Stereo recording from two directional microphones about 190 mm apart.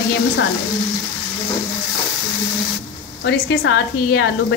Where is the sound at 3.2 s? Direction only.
65° left (ahead or behind).